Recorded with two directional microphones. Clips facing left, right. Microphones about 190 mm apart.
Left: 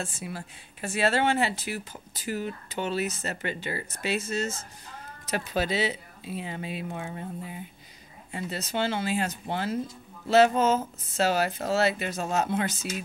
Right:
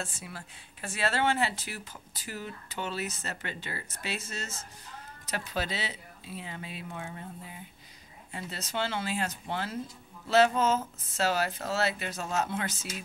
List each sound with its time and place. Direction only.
0.0 s speech: 15° left (ahead or behind)
8.3 s speech: 15° left (ahead or behind)